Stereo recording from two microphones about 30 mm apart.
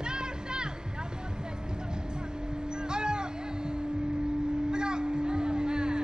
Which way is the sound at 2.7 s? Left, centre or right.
Right.